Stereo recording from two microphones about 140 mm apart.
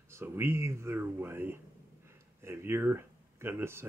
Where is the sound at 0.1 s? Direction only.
20° right (ahead or behind).